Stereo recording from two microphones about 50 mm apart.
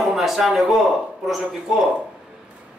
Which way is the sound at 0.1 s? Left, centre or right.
Centre.